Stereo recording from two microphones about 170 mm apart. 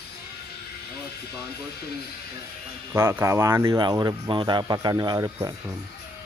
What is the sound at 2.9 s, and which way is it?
Speech, 15° right (ahead or behind).